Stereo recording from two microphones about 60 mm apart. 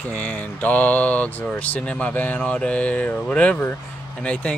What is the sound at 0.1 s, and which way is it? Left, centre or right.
Speech, left.